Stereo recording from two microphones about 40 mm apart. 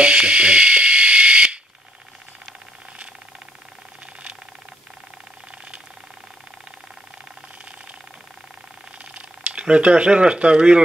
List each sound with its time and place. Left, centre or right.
0.0 s electric toothbrush: right
9.4 s speech: right